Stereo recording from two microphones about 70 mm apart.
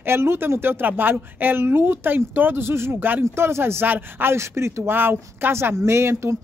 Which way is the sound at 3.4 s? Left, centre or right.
Right.